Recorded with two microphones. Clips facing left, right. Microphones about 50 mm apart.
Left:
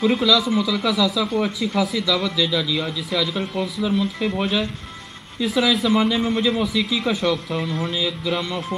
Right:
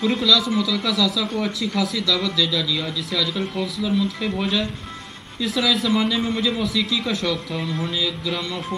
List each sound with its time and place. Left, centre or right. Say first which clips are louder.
0.0 s speech: left 1 dB; centre
3.9 s speech: right 1 dB; centre